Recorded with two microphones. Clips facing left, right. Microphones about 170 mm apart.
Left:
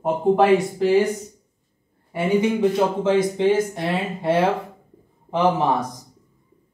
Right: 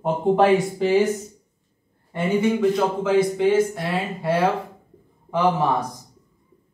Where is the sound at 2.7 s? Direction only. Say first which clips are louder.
Left 1 dB; 25° left (ahead or behind).